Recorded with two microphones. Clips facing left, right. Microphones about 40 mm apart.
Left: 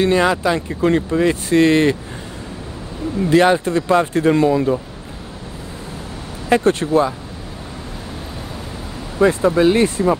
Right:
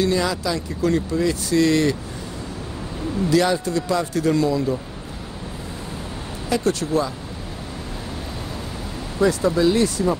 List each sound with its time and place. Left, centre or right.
0.0 s speech: left
3.3 s speech: left
6.5 s speech: left
9.2 s speech: left